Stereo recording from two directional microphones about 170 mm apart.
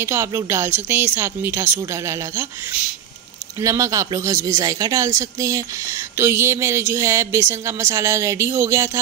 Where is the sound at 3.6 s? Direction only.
20° right (ahead or behind).